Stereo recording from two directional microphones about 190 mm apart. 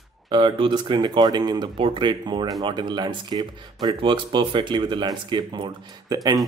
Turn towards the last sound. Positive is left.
turn(degrees=-20)  # may be behind; listen again after turning